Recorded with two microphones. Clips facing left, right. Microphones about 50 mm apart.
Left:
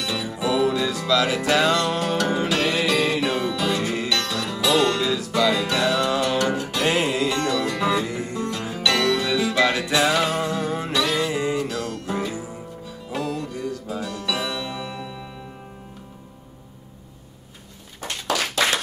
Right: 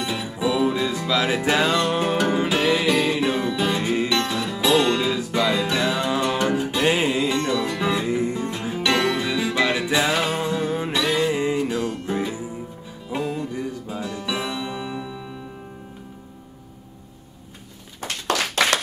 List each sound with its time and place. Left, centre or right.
0.0 s music: centre